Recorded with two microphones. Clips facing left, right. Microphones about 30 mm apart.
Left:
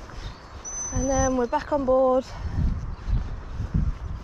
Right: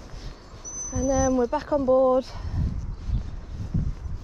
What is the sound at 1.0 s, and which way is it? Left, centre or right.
Speech, centre.